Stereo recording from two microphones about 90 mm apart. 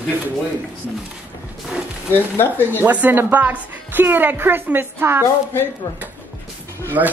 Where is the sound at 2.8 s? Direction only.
20° right (ahead or behind).